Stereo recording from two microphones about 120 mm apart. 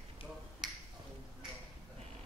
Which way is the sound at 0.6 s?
5° right (ahead or behind).